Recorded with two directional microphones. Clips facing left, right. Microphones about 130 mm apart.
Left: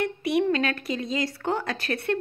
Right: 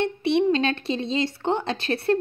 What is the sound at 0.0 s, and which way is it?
A woman's voice, 25° right (ahead or behind).